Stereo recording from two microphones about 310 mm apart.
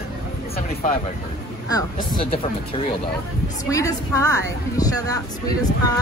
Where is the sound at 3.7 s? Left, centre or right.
Centre.